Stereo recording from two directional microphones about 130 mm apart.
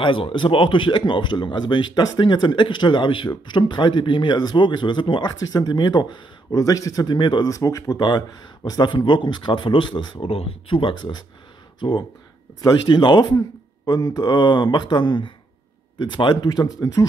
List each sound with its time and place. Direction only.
0.0 s speech: 40° left (ahead or behind)
7.4 s speech: 25° left (ahead or behind)
12.6 s speech: 35° left (ahead or behind)